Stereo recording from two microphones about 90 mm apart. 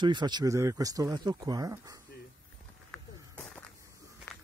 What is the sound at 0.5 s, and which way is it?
Speech, 40° right (ahead or behind).